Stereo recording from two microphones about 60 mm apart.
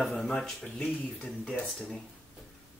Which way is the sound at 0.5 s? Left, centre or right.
Centre.